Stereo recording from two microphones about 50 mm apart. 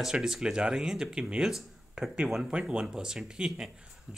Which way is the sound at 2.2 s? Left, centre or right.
Centre.